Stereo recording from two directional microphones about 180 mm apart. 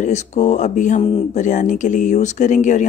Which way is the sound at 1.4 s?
45° left (ahead or behind).